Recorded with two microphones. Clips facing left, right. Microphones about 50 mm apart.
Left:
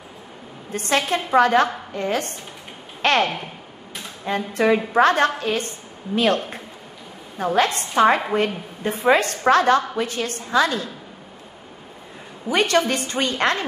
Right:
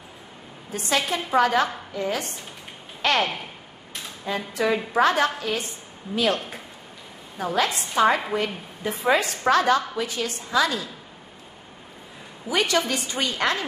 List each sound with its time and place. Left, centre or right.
0.7 s a woman's voice: left
3.0 s a sound: left
4.3 s a woman's voice: left
12.4 s a woman's voice: left